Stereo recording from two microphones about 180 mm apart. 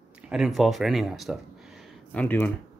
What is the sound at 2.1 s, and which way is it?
Speech, 10° left (ahead or behind).